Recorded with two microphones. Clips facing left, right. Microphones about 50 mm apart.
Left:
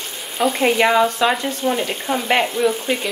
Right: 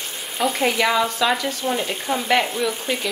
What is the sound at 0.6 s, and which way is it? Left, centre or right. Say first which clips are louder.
Frying: left 5 dB; left.